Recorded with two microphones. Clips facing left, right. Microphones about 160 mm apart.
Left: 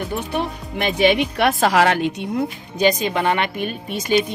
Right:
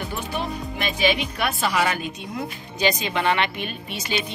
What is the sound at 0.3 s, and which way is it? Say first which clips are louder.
Speech: left 4 dB; 60° left (ahead or behind).